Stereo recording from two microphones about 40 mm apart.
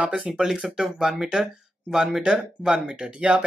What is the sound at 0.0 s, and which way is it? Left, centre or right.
Speech, right.